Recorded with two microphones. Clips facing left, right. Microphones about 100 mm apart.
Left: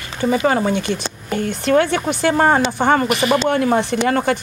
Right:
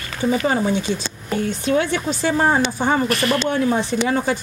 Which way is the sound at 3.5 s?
60° left (ahead or behind).